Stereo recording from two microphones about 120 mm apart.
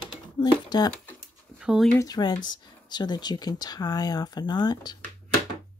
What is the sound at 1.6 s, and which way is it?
Speech, 5° right (ahead or behind).